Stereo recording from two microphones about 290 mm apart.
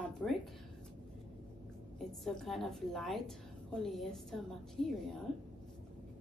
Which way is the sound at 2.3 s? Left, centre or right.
Centre.